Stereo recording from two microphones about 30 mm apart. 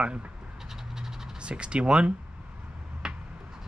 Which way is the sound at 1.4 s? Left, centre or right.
Right.